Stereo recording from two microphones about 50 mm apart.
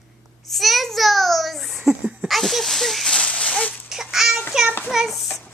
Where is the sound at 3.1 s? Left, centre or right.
Left.